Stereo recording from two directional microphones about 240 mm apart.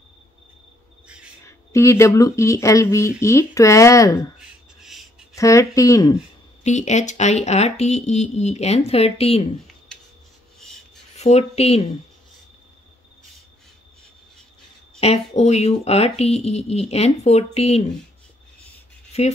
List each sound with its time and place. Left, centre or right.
1.4 s speech: centre
5.3 s speech: centre
6.6 s speech: left
11.1 s speech: left
15.0 s speech: left
19.1 s speech: left